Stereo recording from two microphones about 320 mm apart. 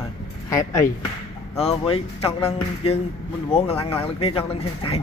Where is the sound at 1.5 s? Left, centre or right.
Centre.